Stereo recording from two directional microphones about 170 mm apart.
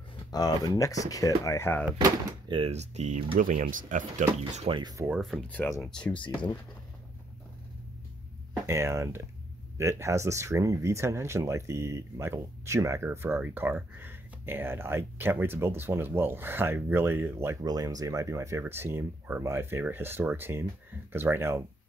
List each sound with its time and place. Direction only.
0.3 s speech: 20° left (ahead or behind)
2.0 s speech: 25° right (ahead or behind); by 4.3 s 50° right (ahead or behind)
4.3 s speech: 35° right (ahead or behind)
4.9 s speech: 10° right (ahead or behind)
5.2 s speech: 5° left (ahead or behind)
6.1 s speech: 30° left (ahead or behind)
8.6 s speech: 15° right (ahead or behind)